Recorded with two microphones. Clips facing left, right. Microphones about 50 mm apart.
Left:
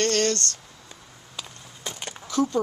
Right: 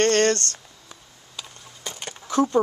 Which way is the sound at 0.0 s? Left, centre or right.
Right.